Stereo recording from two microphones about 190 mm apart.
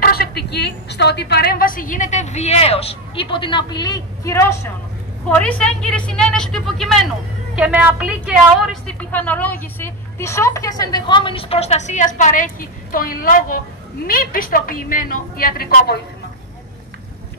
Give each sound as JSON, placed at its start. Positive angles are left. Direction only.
{"t": 0.0, "sound": "a woman's voice", "side_deg": 55}
{"t": 9.1, "sound": "a woman's voice", "side_deg": 10}